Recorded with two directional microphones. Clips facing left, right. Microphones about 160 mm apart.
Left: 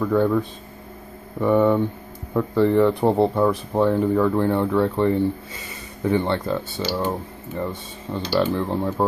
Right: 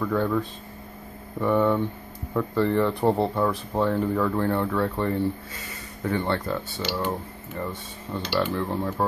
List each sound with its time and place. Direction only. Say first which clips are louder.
0.0 s speech: left 5 dB; 10° left (ahead or behind); by 9.0 s 25° left (ahead or behind)